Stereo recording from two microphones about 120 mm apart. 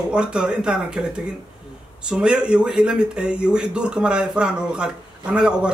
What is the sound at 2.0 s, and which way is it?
Speech, 5° right (ahead or behind).